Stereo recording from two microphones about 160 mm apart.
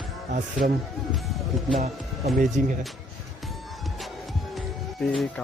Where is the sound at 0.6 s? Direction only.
65° right (ahead or behind).